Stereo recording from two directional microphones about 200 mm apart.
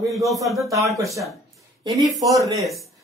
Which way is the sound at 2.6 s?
Centre (ahead or behind).